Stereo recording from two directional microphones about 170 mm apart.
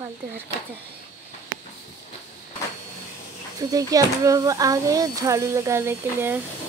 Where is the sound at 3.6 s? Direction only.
20° right (ahead or behind).